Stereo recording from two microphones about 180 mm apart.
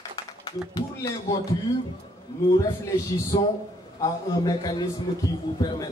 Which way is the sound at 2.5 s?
20° left (ahead or behind).